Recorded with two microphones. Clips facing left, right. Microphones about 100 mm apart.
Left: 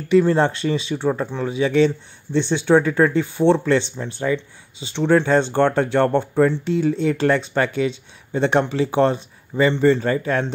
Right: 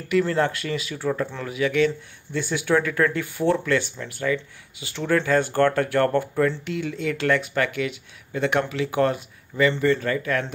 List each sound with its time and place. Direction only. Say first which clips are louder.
0.1 s speech: left 6 dB; 25° left (ahead or behind)